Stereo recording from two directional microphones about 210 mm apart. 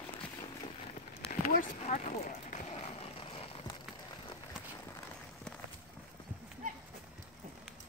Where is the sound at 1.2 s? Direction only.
35° left (ahead or behind).